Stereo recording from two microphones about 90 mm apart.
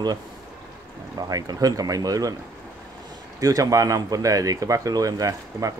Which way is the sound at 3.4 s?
40° right (ahead or behind).